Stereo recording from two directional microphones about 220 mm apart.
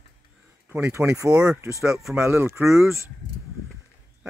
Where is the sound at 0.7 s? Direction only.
10° right (ahead or behind).